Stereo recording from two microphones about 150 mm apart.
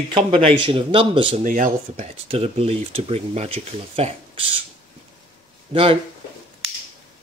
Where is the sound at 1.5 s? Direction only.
60° right (ahead or behind); by 4.4 s 40° right (ahead or behind).